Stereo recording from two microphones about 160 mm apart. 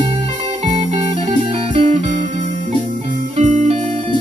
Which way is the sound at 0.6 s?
40° right (ahead or behind).